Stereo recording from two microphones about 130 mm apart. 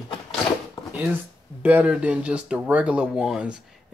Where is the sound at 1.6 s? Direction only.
10° right (ahead or behind).